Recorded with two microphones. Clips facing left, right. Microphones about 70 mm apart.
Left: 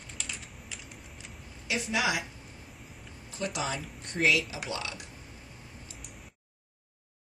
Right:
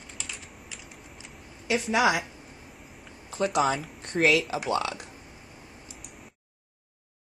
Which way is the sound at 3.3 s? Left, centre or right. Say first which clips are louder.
Right 9 dB; right.